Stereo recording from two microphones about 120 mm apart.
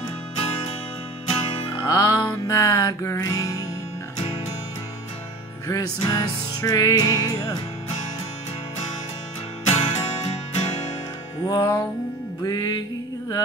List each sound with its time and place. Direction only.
1.3 s music: 45° left (ahead or behind)
1.9 s music: 30° left (ahead or behind)
5.7 s music: 30° left (ahead or behind)
9.7 s music: 60° left (ahead or behind)
11.4 s music: 35° left (ahead or behind)